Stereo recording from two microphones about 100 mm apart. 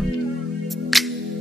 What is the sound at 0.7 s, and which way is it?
Music, centre (ahead or behind).